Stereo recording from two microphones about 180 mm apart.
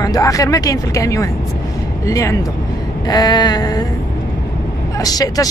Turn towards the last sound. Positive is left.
turn(degrees=20)  # may be behind; listen again after turning